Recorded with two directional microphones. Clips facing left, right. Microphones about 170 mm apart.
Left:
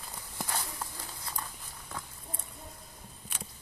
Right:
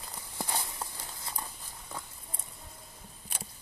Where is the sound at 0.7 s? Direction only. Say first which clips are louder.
Even; 20° right (ahead or behind).